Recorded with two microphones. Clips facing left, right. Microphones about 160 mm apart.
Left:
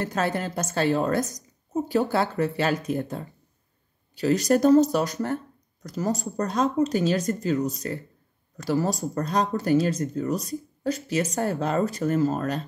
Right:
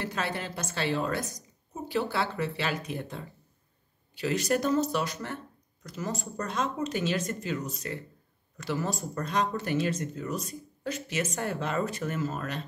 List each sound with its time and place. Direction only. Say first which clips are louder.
0.0 s a woman's voice: left 6 dB; 45° left (ahead or behind)